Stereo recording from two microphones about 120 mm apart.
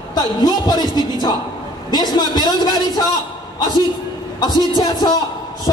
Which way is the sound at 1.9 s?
35° left (ahead or behind).